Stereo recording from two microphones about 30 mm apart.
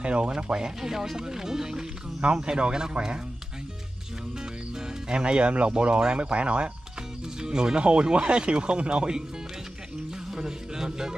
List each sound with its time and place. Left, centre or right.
0.0 s speech: right
0.3 s speech: right
4.7 s speech: right
7.3 s speech: right
10.3 s speech: right